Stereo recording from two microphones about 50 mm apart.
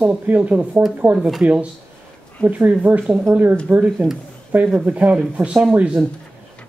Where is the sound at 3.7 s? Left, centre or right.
Right.